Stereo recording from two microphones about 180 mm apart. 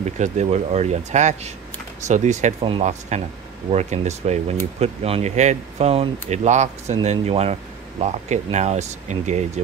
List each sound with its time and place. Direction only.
0.0 s speech: 40° right (ahead or behind)